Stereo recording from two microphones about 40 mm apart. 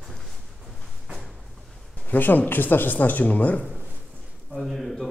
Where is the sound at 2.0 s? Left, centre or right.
Left.